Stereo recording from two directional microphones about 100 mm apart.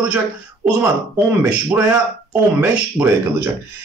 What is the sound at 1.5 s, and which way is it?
Speech, 15° right (ahead or behind).